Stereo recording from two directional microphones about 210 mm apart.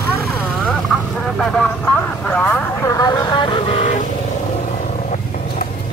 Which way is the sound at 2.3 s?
5° left (ahead or behind).